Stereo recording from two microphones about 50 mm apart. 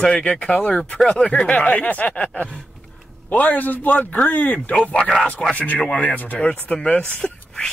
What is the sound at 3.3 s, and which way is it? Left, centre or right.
Speech, left.